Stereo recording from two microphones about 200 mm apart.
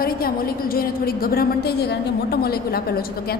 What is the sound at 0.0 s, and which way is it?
A woman's voice, 45° left (ahead or behind).